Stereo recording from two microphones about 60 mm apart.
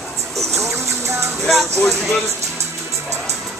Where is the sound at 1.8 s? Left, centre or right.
Centre.